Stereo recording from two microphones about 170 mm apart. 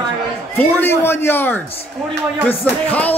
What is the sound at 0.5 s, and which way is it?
A man's voice, 10° left (ahead or behind).